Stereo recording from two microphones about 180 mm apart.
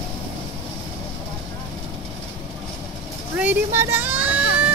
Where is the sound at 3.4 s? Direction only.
10° right (ahead or behind).